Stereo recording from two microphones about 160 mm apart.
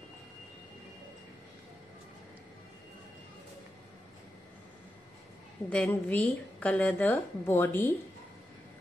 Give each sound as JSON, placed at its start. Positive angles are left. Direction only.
{"t": 5.7, "sound": "a woman's voice", "side_deg": 10}